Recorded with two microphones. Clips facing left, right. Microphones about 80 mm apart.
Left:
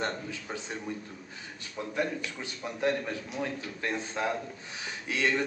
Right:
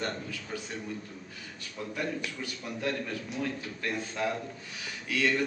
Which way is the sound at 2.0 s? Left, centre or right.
Left.